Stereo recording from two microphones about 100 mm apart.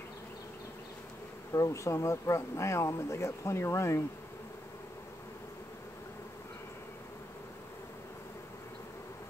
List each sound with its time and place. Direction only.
1.5 s speech: 30° left (ahead or behind)